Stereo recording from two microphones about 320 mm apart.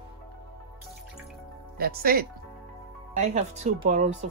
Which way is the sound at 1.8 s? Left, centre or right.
Right.